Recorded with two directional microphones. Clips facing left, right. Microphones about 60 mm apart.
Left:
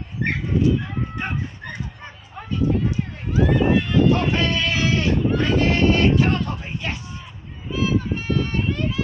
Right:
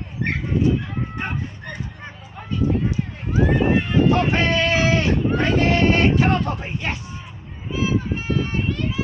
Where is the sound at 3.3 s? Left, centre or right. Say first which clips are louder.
Even; right.